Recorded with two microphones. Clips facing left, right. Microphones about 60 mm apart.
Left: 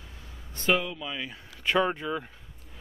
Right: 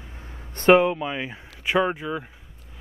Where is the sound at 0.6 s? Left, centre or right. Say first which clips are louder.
Right 11 dB; right.